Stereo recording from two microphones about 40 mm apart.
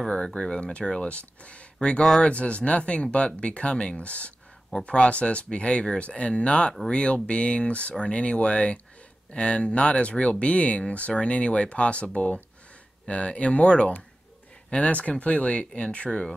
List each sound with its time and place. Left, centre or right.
0.1 s speech: left
1.0 s speech: left
1.8 s speech: left